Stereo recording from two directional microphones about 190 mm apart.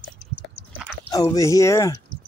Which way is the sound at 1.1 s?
15° left (ahead or behind).